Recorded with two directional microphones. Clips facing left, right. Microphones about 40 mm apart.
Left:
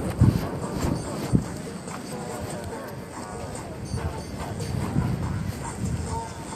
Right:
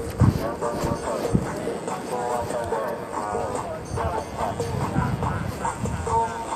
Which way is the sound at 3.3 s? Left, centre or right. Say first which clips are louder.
Right 8 dB; right.